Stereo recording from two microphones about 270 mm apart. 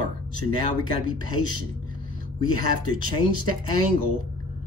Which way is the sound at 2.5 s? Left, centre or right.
Right.